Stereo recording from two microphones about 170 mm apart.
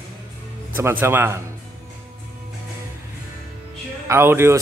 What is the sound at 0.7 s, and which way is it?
Speech, 15° right (ahead or behind).